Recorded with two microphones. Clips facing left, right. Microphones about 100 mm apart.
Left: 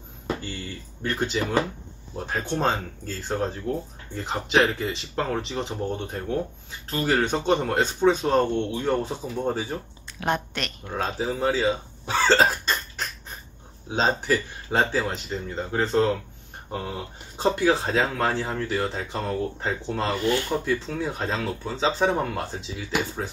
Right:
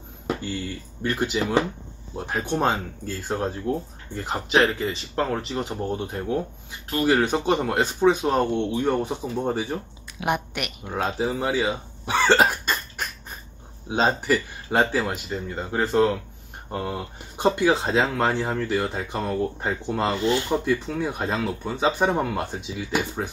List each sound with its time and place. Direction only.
1.0 s speech: 5° right (ahead or behind)
17.4 s speech: 15° right (ahead or behind)